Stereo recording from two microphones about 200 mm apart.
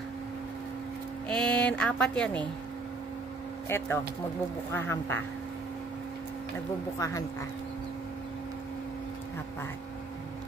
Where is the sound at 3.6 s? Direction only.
10° left (ahead or behind).